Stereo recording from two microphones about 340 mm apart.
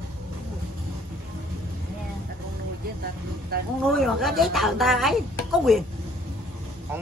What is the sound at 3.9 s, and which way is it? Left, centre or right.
Speech, centre.